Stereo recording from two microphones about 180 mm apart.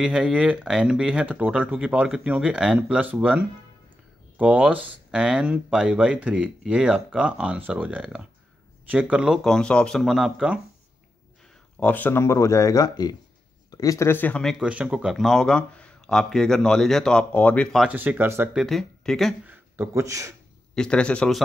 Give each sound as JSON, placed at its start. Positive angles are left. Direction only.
{"t": 0.0, "sound": "speech", "side_deg": -5}
{"t": 11.8, "sound": "speech", "side_deg": 10}
{"t": 17.8, "sound": "speech", "side_deg": -10}
{"t": 18.6, "sound": "speech", "side_deg": 0}
{"t": 19.4, "sound": "speech", "side_deg": -10}
{"t": 20.7, "sound": "speech", "side_deg": 5}